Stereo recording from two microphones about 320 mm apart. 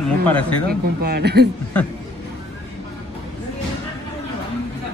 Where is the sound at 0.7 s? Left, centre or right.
Right.